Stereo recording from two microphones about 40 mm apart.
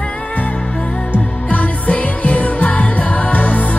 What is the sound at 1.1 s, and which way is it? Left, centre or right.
Music, left.